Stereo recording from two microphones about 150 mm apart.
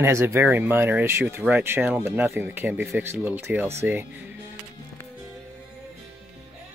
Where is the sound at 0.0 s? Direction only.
15° right (ahead or behind).